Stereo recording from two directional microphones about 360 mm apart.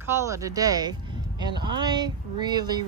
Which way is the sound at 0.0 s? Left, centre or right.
Centre.